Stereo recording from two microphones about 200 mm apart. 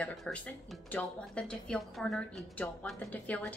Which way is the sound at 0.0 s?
5° left (ahead or behind).